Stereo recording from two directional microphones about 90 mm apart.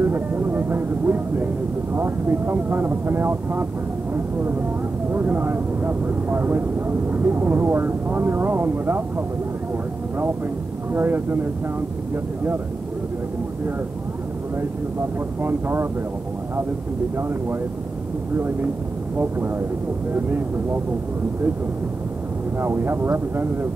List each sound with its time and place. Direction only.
0.0 s speech: 25° right (ahead or behind)
4.1 s vehicle: 25° right (ahead or behind)
5.1 s speech: 25° right (ahead or behind)
10.9 s speech: 25° right (ahead or behind)
14.6 s speech: 25° right (ahead or behind)
17.2 s speech: 25° right (ahead or behind)
20.1 s speech: 25° right (ahead or behind)
22.6 s speech: 25° right (ahead or behind)